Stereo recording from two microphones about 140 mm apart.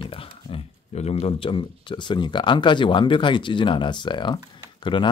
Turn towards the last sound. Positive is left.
turn(degrees=35)  # may be behind; listen again after turning